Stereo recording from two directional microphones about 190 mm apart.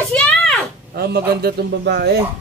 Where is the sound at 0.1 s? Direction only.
5° left (ahead or behind).